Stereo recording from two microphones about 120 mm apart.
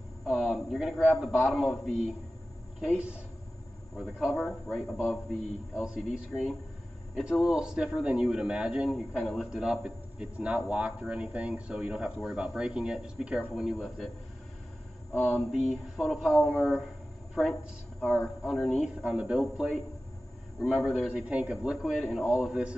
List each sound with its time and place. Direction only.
0.2 s a man's voice: 5° right (ahead or behind)
2.8 s a man's voice: 10° right (ahead or behind)
4.3 s speech: 10° left (ahead or behind)
4.6 s a man's voice: centre (ahead or behind)
15.3 s a man's voice: 5° right (ahead or behind)
18.0 s a man's voice: 5° left (ahead or behind)
19.0 s a man's voice: 10° right (ahead or behind)